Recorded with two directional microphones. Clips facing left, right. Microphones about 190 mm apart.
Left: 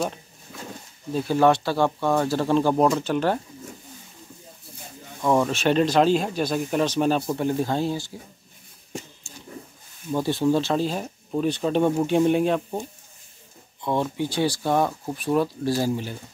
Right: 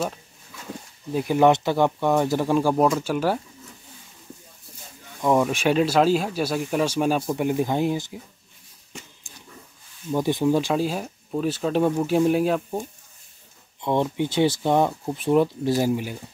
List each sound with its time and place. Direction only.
1.1 s speech: 15° right (ahead or behind)
5.2 s speech: 10° right (ahead or behind)
9.3 s a sound: 15° right (ahead or behind)
10.1 s speech: 15° right (ahead or behind)
13.7 s speech: 20° right (ahead or behind)